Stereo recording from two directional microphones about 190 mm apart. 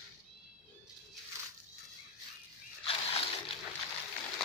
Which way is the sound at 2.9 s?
30° left (ahead or behind).